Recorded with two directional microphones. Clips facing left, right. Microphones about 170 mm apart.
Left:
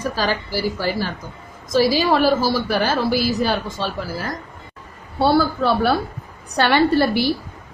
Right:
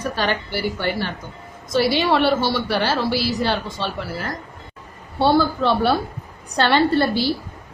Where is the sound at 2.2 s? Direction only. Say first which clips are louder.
Left 1 dB; 5° left (ahead or behind).